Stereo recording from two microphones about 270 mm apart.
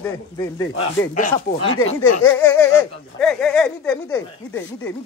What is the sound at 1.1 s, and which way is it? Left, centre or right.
Speech, left.